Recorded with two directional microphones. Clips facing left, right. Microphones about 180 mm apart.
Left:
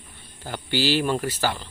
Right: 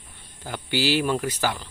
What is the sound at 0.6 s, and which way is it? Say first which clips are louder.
Speech: even; 10° right (ahead or behind).